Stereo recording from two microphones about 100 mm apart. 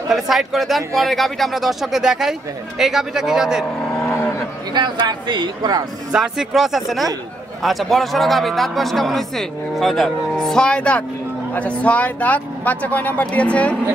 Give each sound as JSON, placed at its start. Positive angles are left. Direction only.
{"t": 0.1, "sound": "speech", "side_deg": 0}
{"t": 4.1, "sound": "cattle", "side_deg": 25}
{"t": 4.7, "sound": "speech", "side_deg": -50}
{"t": 6.1, "sound": "speech", "side_deg": -5}